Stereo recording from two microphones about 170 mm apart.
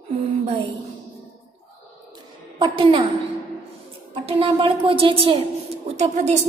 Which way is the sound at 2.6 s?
30° right (ahead or behind).